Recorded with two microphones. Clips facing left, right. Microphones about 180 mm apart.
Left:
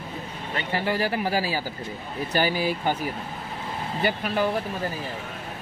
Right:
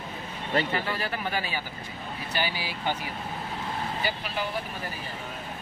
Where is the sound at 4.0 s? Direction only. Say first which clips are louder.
Left 12 dB; 50° left (ahead or behind).